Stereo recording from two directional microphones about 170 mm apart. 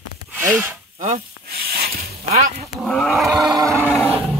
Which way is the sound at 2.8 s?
Centre (ahead or behind).